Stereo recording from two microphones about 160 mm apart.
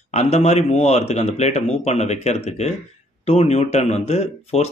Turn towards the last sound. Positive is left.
turn(degrees=40)  # may be behind; listen again after turning